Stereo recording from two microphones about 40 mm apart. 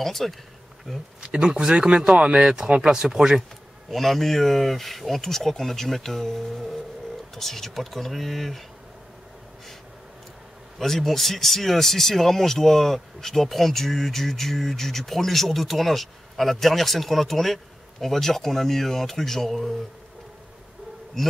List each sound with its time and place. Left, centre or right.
0.0 s speech: centre
1.2 s speech: right
3.9 s speech: centre
10.8 s speech: centre